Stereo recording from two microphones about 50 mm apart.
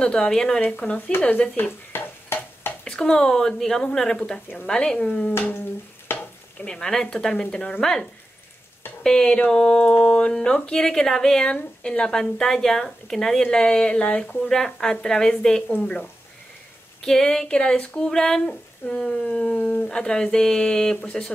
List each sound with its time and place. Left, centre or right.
0.0 s speech: centre
0.8 s speech: left
1.6 s stir: left
2.8 s speech: centre
6.1 s stir: left
6.6 s speech: centre
9.8 s speech: left
14.0 s speech: left
14.5 s speech: centre
17.0 s speech: centre
19.2 s speech: left